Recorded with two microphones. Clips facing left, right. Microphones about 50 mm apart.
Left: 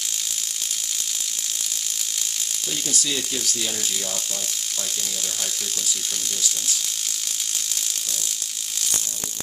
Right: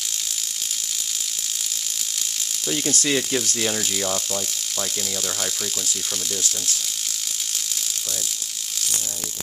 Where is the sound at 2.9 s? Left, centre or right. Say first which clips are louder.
Right 5 dB; right.